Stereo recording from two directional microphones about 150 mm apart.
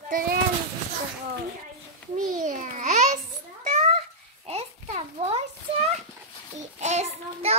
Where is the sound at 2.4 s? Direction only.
60° right (ahead or behind).